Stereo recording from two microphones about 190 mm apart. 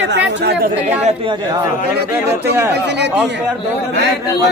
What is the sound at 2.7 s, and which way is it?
Speech, 65° right (ahead or behind).